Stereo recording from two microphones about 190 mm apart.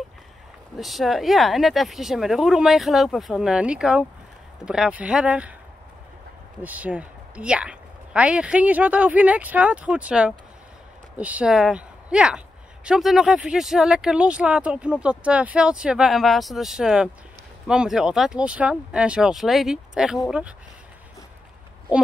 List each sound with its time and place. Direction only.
0.7 s speech: centre (ahead or behind)
6.6 s speech: 10° right (ahead or behind)